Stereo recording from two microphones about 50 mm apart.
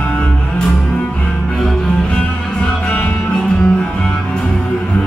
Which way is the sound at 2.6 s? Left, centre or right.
Left.